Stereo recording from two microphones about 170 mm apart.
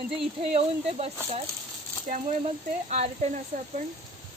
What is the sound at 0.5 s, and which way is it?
Speech, 35° right (ahead or behind).